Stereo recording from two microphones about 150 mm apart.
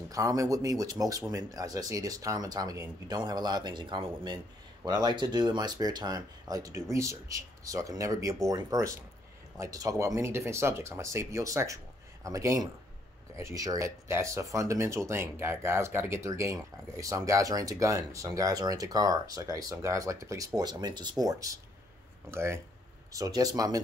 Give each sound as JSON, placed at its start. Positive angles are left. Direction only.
{"t": 0.1, "sound": "speech", "side_deg": -20}